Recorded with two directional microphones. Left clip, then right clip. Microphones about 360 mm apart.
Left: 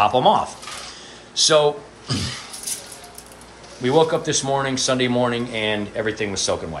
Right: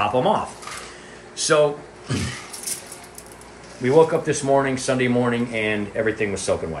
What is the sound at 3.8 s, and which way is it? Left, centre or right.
Speech, centre.